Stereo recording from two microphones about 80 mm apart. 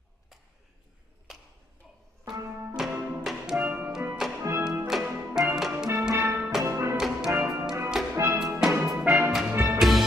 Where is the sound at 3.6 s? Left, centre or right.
Centre.